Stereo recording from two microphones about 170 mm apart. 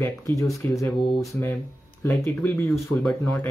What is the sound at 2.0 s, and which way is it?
Speech, 10° left (ahead or behind).